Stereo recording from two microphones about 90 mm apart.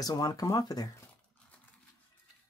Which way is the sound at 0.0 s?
45° left (ahead or behind).